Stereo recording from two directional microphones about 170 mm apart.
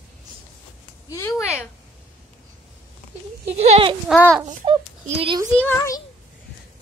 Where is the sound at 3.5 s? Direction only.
30° right (ahead or behind).